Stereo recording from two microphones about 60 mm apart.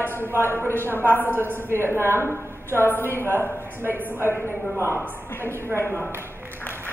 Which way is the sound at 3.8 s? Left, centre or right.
Right.